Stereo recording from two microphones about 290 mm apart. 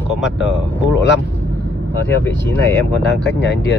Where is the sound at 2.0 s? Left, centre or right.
Centre.